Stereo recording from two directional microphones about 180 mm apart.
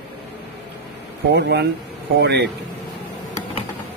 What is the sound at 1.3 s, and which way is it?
Speech, 65° right (ahead or behind).